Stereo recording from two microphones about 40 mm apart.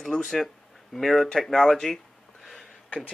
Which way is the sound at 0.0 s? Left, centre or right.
Centre.